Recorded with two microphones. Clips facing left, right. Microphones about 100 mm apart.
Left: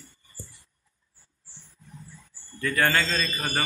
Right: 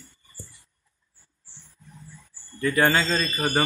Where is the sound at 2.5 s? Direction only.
20° right (ahead or behind).